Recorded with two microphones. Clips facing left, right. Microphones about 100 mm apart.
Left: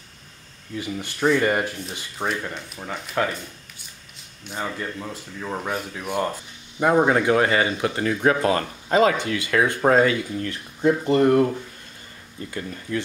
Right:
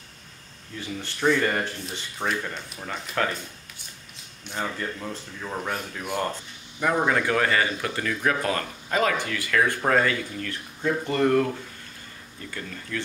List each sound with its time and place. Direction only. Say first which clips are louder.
0.7 s speech: left 4 dB; 15° left (ahead or behind)
1.9 s speech: left 1 dB; centre (ahead or behind)
4.5 s speech: left 1 dB; 5° left (ahead or behind)
6.8 s speech: left 5 dB; 25° left (ahead or behind)
12.4 s speech: left 5 dB; 20° left (ahead or behind)